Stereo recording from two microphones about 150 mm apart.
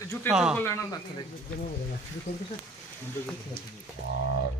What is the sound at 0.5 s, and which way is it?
Speech, 15° left (ahead or behind).